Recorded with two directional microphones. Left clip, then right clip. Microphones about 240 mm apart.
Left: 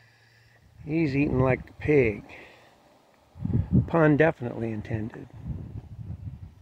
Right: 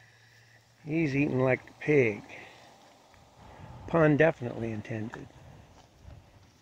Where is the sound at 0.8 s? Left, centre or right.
Centre.